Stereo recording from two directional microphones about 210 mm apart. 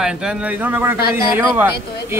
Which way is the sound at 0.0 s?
5° right (ahead or behind).